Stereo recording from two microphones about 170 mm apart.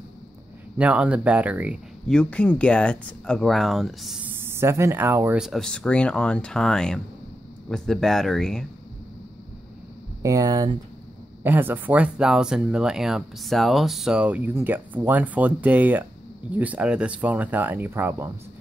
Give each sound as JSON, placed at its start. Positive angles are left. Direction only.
{"t": 0.7, "sound": "speech", "side_deg": -10}
{"t": 2.0, "sound": "speech", "side_deg": 5}
{"t": 10.2, "sound": "speech", "side_deg": -20}
{"t": 11.4, "sound": "speech", "side_deg": -10}